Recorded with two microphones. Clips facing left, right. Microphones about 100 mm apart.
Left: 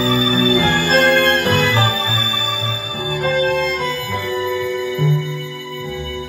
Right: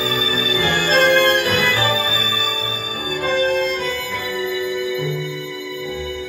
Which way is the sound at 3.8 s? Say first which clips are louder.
Left 2 dB; 30° left (ahead or behind).